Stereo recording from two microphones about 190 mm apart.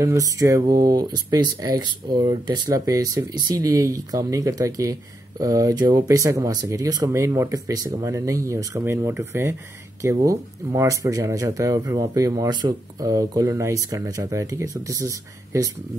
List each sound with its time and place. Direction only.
0.0 s speech: 15° right (ahead or behind)